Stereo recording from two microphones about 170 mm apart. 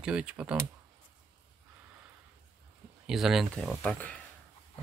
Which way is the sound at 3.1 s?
Centre (ahead or behind).